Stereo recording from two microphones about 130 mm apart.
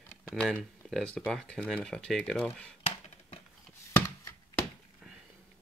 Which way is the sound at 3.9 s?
25° left (ahead or behind).